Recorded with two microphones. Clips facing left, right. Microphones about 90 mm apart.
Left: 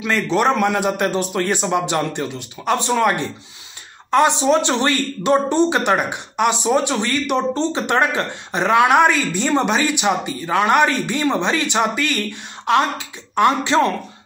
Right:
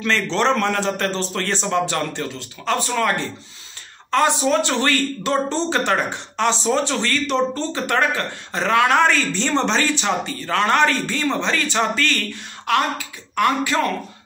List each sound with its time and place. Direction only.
0.0 s speech: 10° left (ahead or behind)